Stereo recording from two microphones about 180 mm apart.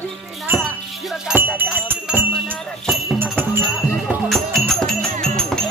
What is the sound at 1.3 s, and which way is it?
Music, 10° right (ahead or behind).